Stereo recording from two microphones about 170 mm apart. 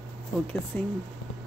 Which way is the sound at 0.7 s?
10° left (ahead or behind).